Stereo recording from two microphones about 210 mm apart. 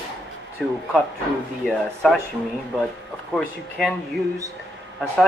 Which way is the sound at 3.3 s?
Centre (ahead or behind).